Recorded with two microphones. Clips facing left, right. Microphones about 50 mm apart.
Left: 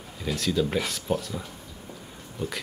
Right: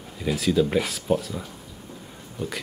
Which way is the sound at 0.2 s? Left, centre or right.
Centre.